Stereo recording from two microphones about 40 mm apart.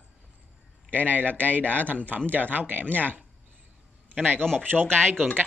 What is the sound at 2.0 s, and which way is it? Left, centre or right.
Speech, right.